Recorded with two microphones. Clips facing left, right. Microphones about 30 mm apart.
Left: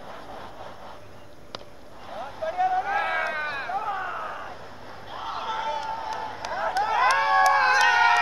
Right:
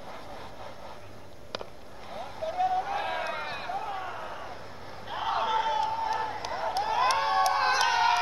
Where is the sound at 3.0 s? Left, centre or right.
Left.